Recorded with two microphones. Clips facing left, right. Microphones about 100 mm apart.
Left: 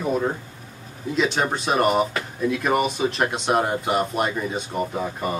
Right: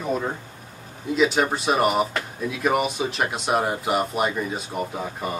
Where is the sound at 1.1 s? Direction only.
5° right (ahead or behind).